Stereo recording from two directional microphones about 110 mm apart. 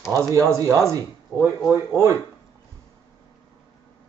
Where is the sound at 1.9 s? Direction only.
25° right (ahead or behind).